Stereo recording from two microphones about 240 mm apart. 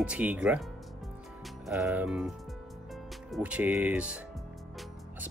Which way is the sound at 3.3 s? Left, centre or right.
Centre.